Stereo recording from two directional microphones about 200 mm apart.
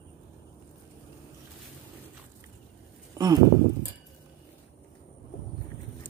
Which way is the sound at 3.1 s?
20° right (ahead or behind).